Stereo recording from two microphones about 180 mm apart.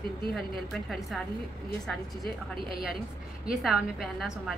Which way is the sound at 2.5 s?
30° right (ahead or behind).